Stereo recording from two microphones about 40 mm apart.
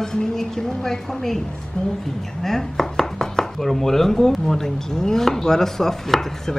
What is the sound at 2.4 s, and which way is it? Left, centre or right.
Chopping, centre.